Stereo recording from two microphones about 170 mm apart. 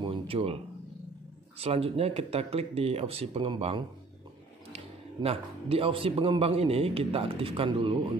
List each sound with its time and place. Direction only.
0.0 s speech: 35° right (ahead or behind)
1.6 s a man's voice: 35° right (ahead or behind)